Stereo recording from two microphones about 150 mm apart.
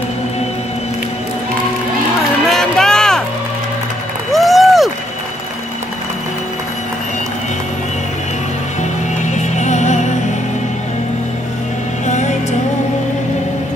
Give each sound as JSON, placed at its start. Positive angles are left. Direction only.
{"t": 2.4, "sound": "music", "side_deg": 0}
{"t": 4.3, "sound": "a sound", "side_deg": 0}
{"t": 9.4, "sound": "music", "side_deg": 50}
{"t": 12.1, "sound": "music", "side_deg": 50}